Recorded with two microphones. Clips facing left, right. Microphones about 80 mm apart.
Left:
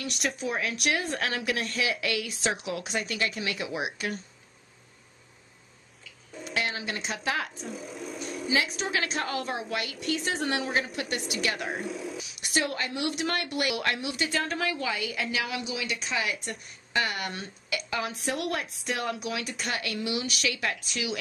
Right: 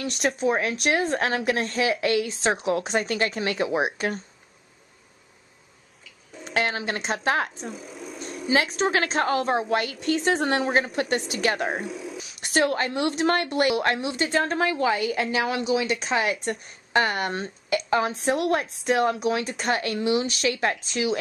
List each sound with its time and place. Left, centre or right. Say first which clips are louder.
0.4 s a woman's voice: right 7 dB; right
6.4 s a woman's voice: right 6 dB; right
7.7 s a sound: even; centre
8.6 s speech: right 7 dB; right
11.8 s speech: right 1 dB; centre
12.2 s a sound: right 8 dB; right
12.7 s speech: right 6 dB; right
19.1 s speech: right 8 dB; right